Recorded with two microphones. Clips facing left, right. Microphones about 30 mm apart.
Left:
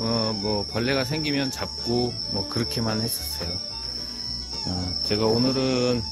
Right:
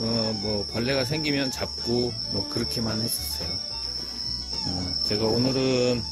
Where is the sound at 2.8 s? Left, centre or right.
Left.